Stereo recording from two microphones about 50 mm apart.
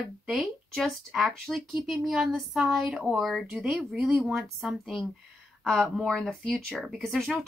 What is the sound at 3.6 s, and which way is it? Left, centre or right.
Speech, centre.